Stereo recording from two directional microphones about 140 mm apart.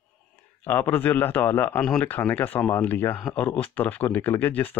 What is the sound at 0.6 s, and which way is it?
Speech, 15° left (ahead or behind).